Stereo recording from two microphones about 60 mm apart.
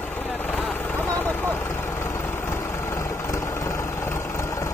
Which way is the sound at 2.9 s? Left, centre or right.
Left.